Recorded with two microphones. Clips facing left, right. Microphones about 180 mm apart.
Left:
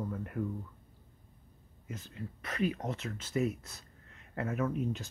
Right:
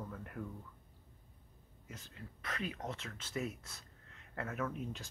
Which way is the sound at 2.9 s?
5° left (ahead or behind).